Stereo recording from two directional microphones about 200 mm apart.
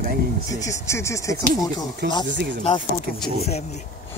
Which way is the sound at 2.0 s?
50° right (ahead or behind).